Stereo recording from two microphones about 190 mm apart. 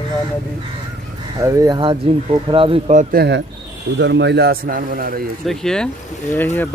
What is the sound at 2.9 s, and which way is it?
A man's voice, 60° right (ahead or behind).